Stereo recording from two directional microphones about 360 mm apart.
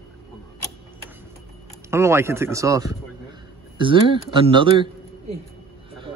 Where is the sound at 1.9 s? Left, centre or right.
Centre.